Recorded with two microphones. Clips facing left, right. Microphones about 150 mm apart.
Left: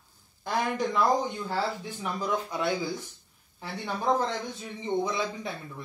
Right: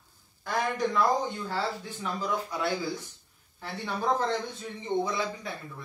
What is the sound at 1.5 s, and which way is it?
Speech, 20° left (ahead or behind).